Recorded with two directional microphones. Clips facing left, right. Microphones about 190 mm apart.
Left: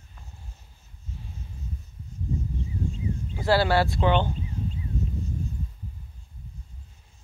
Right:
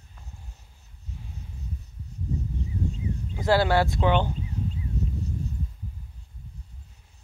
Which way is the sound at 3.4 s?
20° right (ahead or behind).